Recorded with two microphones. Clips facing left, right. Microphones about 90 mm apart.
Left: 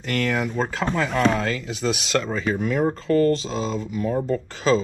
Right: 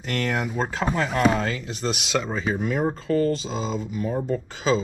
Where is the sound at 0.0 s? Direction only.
Centre (ahead or behind).